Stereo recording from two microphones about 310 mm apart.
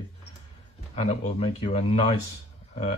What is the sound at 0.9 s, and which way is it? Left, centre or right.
Speech, left.